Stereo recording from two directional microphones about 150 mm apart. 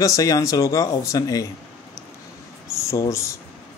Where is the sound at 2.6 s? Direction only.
20° left (ahead or behind).